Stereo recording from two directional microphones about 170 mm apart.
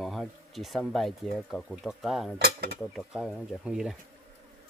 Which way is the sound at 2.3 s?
75° right (ahead or behind).